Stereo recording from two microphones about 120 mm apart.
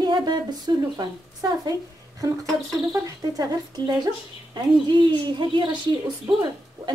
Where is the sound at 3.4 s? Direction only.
35° right (ahead or behind).